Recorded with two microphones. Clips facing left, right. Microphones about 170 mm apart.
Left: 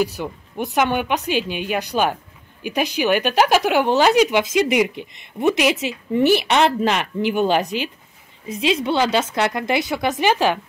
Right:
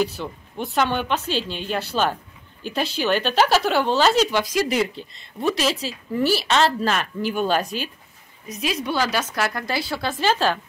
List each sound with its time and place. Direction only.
0.0 s a woman's voice: 15° left (ahead or behind)